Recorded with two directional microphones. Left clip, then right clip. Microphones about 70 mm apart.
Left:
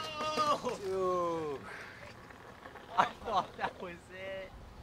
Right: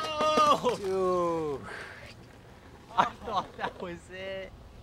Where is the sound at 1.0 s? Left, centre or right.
Centre.